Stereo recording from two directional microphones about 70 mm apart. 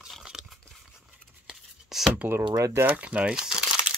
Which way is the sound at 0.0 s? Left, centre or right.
Centre.